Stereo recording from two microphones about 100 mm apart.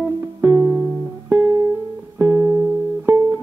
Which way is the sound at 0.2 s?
25° right (ahead or behind).